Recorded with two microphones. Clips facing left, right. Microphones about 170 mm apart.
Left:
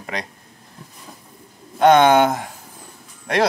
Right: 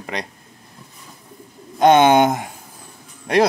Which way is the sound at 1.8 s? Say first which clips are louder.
Even; 30° right (ahead or behind).